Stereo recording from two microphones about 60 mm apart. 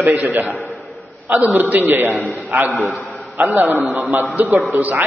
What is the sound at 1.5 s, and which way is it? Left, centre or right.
A man's voice, right.